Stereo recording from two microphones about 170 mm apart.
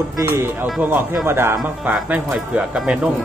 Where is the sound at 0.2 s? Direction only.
15° right (ahead or behind).